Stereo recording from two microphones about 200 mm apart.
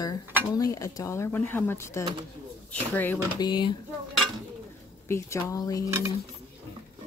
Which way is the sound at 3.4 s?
25° left (ahead or behind).